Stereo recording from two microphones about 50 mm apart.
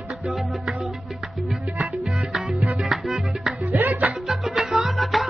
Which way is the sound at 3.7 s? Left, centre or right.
Right.